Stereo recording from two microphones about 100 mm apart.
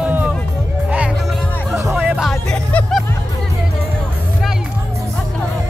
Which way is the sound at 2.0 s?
10° right (ahead or behind).